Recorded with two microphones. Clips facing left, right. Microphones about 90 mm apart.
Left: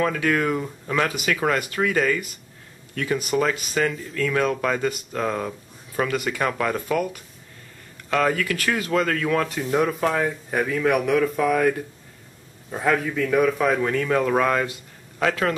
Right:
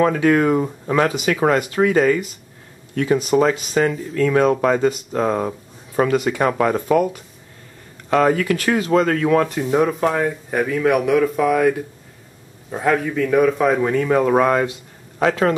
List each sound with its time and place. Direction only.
0.0 s speech: 25° right (ahead or behind)
9.5 s speech: 5° right (ahead or behind); by 15.5 s 25° right (ahead or behind)